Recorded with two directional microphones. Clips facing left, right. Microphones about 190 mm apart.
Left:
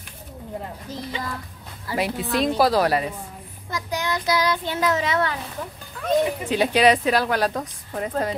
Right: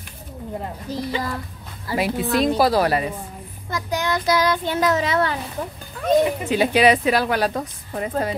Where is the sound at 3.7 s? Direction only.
50° right (ahead or behind); by 5.3 s 35° right (ahead or behind).